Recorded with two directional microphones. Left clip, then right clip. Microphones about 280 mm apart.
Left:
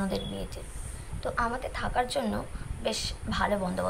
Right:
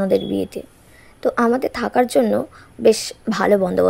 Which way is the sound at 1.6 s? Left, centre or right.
Centre.